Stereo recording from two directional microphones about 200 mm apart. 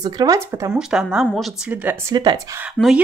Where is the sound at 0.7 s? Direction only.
5° right (ahead or behind).